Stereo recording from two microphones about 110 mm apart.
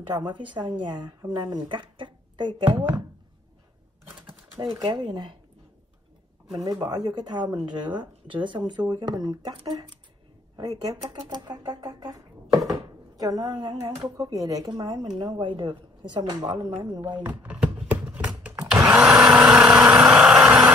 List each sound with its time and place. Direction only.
0.1 s speech: 35° right (ahead or behind)
4.7 s speech: 40° right (ahead or behind)
6.5 s speech: 40° right (ahead or behind)
13.2 s speech: 35° right (ahead or behind)
15.3 s speech: 45° right (ahead or behind)
17.2 s blender: 15° right (ahead or behind)